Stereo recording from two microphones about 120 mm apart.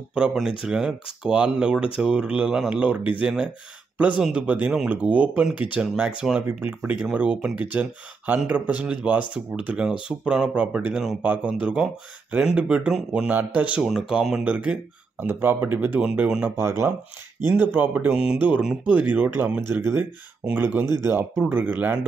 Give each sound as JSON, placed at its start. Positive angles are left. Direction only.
{"t": 0.1, "sound": "speech", "side_deg": -5}
{"t": 16.5, "sound": "speech", "side_deg": -20}